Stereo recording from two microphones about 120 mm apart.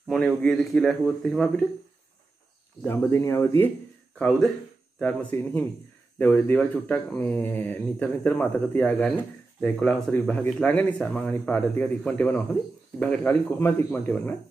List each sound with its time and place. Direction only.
0.1 s a man's voice: 10° left (ahead or behind)
2.9 s speech: 20° left (ahead or behind)
4.2 s a man's voice: 5° left (ahead or behind)